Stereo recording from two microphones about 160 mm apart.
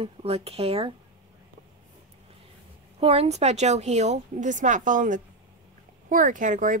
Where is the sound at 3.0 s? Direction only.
40° right (ahead or behind).